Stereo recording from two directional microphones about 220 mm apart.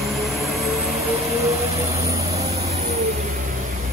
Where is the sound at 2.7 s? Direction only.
30° right (ahead or behind).